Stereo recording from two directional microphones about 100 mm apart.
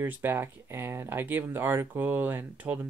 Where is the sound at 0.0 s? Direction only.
20° right (ahead or behind).